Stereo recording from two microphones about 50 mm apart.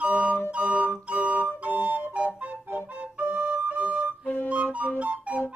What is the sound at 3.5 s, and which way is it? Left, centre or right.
Music, right.